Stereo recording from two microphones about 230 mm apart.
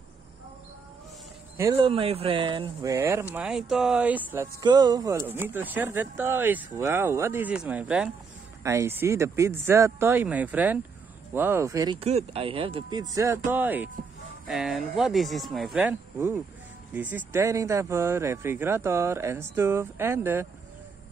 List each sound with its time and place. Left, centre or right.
1.8 s speech: right